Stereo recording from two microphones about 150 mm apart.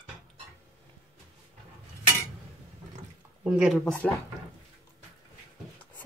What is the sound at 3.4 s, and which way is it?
Speech, 5° right (ahead or behind).